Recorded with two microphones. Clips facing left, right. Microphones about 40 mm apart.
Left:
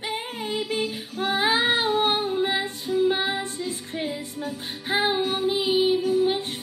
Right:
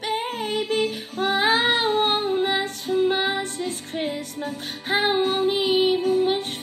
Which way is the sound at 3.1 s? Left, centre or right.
Centre.